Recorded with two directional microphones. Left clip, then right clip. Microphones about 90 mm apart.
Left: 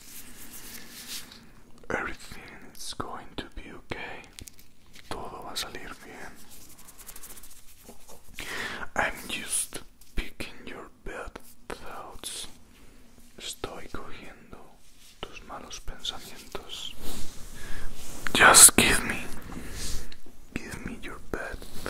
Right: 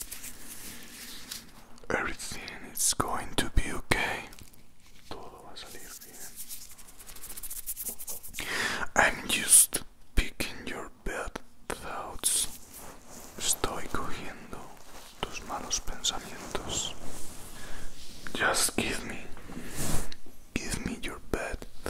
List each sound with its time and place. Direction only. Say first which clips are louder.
1.3 s a sound: right 7 dB; 45° right (ahead or behind)
1.9 s whispering: right 1 dB; 5° right (ahead or behind)
2.2 s whispering: right 5 dB; 20° right (ahead or behind)
5.0 s a sound: left 6 dB; 25° left (ahead or behind)
5.3 s whispering: left 10 dB; 45° left (ahead or behind)
8.4 s whispering: right 3 dB; 20° right (ahead or behind)
18.2 s whispering: left 11 dB; 30° left (ahead or behind); by 19.3 s 15° left (ahead or behind)
20.1 s whispering: right 2 dB; 20° right (ahead or behind)